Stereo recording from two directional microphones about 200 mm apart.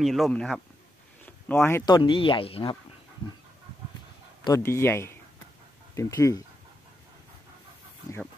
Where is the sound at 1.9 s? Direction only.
25° left (ahead or behind).